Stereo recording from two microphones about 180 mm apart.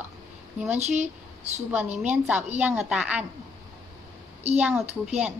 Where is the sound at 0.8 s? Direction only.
40° right (ahead or behind).